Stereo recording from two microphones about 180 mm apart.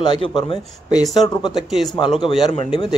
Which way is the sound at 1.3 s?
25° left (ahead or behind).